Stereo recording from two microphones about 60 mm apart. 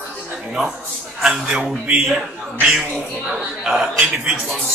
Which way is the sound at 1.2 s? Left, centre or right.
Centre.